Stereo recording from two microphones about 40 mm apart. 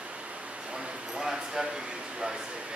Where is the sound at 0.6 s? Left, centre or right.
Right.